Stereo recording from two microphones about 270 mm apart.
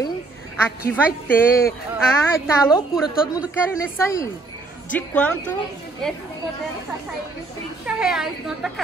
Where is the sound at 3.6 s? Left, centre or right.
Centre.